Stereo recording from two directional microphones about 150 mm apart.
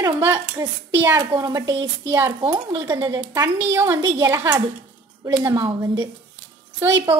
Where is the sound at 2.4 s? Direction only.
35° right (ahead or behind).